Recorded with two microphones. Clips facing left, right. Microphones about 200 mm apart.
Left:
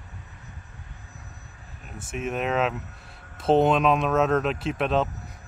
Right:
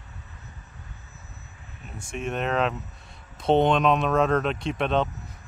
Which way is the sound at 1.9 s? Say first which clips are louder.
Left 1 dB; 5° left (ahead or behind).